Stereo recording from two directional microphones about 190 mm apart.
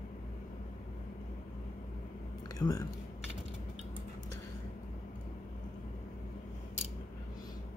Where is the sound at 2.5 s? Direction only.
20° left (ahead or behind).